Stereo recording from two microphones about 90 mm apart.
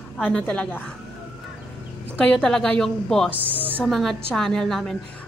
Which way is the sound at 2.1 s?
10° left (ahead or behind).